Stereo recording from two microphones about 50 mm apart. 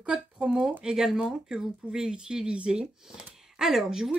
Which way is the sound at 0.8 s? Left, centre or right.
Centre.